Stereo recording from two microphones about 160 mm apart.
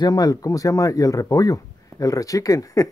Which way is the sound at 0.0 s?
20° left (ahead or behind).